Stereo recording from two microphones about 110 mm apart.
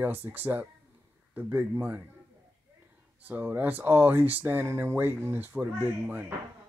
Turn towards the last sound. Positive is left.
turn(degrees=-15)  # may be behind; listen again after turning